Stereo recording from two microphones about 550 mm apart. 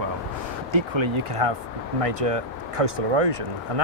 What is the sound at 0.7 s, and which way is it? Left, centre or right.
Speech, right.